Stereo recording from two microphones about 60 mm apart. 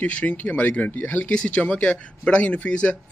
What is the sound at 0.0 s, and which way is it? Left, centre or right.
Speech, left.